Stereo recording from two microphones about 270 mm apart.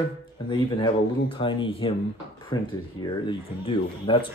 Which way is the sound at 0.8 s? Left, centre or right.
Centre.